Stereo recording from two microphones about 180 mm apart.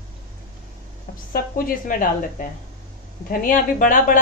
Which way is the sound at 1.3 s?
50° left (ahead or behind).